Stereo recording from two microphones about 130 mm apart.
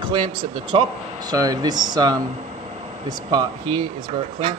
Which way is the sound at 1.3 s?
30° right (ahead or behind).